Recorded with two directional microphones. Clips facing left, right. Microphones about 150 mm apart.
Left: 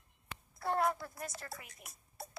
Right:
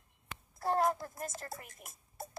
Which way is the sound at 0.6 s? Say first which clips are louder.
Right 2 dB; 35° right (ahead or behind).